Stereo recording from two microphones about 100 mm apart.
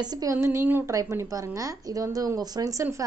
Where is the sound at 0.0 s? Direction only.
40° right (ahead or behind).